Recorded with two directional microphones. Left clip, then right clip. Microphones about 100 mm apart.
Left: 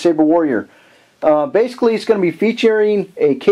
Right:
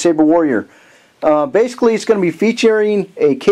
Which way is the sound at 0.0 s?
25° right (ahead or behind).